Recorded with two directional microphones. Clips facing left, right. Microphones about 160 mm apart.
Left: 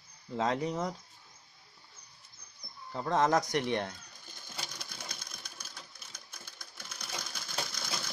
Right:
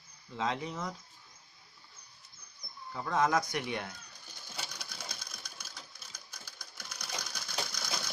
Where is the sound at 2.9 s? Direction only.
30° left (ahead or behind).